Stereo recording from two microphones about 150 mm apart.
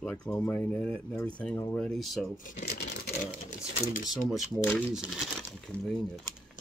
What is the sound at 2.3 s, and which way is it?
Speech, 65° left (ahead or behind).